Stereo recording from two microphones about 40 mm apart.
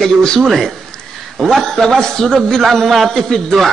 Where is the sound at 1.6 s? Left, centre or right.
Centre.